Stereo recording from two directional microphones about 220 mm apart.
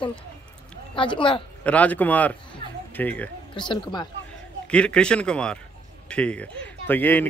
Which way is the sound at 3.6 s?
20° left (ahead or behind).